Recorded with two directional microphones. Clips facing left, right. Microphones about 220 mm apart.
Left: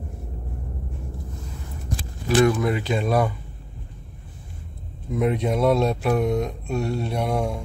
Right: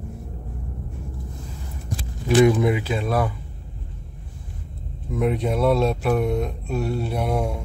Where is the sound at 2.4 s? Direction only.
15° right (ahead or behind); by 3.3 s centre (ahead or behind).